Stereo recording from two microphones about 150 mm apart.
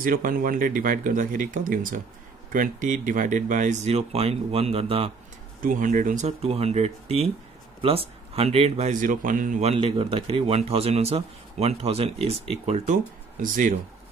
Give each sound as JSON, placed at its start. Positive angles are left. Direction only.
{"t": 0.0, "sound": "speech", "side_deg": -70}
{"t": 5.6, "sound": "speech", "side_deg": -65}